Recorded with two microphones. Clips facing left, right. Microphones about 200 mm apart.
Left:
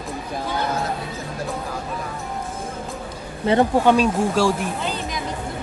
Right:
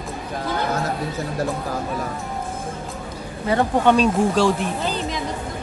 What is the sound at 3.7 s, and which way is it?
Speech, 10° left (ahead or behind).